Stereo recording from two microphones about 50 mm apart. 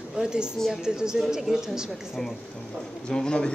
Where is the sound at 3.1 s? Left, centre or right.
Centre.